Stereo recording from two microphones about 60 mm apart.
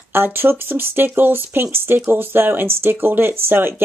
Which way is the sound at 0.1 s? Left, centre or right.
Right.